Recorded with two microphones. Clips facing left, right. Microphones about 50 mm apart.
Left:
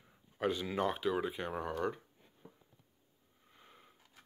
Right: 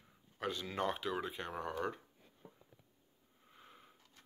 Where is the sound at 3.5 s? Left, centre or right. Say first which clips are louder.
Right 1 dB; centre.